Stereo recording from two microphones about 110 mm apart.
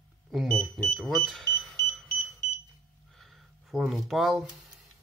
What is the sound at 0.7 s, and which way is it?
Speech, centre (ahead or behind).